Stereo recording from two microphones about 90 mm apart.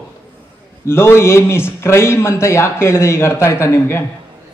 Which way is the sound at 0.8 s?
30° left (ahead or behind).